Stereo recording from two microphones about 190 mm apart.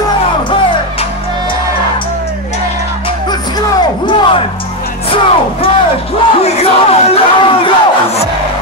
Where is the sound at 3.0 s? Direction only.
25° left (ahead or behind).